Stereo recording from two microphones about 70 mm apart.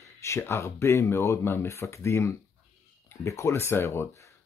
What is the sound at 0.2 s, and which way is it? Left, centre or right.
Speech, left.